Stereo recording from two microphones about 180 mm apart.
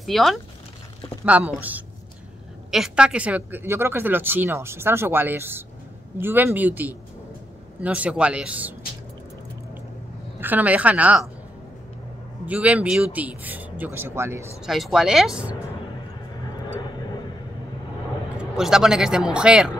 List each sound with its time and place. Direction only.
0.0 s speech: centre (ahead or behind)
10.4 s speech: 10° right (ahead or behind)
12.4 s speech: 10° right (ahead or behind)
14.7 s speech: centre (ahead or behind)
18.4 s speech: 5° right (ahead or behind)